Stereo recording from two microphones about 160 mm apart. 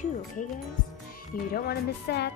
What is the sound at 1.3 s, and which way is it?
Speech, 70° left (ahead or behind).